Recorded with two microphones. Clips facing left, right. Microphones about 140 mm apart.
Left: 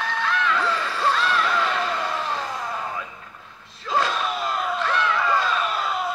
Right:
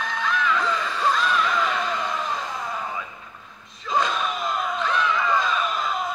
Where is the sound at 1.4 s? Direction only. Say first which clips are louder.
Left 1 dB; 5° left (ahead or behind).